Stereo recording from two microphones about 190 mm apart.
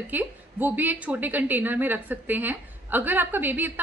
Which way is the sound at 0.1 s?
10° right (ahead or behind).